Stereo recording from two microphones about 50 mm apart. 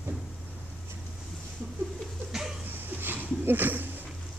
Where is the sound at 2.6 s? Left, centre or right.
Right.